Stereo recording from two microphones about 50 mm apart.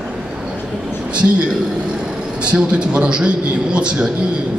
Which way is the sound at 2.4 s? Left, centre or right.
Right.